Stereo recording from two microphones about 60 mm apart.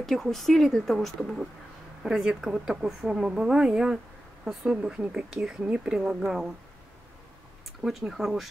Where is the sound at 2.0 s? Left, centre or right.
Centre.